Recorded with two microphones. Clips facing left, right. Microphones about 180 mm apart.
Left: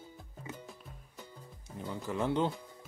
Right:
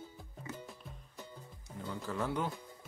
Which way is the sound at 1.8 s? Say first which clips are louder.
Left 3 dB; 20° left (ahead or behind).